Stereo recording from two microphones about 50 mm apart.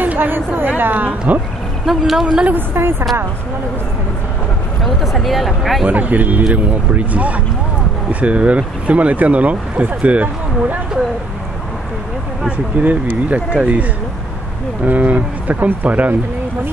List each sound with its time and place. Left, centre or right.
0.0 s a sound: right
1.9 s speech: centre
2.7 s a woman's voice: right
4.8 s speech: centre
5.9 s speech: right
12.4 s speech: right
14.9 s speech: right